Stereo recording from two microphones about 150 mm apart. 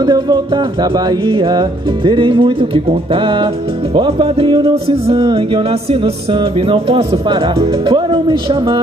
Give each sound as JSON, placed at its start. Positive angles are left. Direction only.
{"t": 0.0, "sound": "music", "side_deg": -30}